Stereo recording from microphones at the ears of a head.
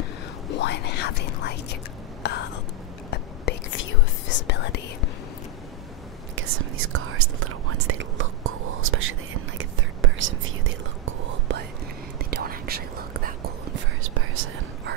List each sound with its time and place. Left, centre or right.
0.5 s whispering: left
3.1 s whispering: left
6.3 s speech: right
11.1 s whispering: right